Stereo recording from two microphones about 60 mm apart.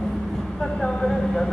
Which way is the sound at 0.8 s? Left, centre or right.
Centre.